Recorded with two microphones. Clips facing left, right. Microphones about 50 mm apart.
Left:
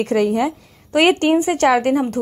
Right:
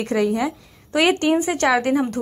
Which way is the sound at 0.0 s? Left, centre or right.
Left.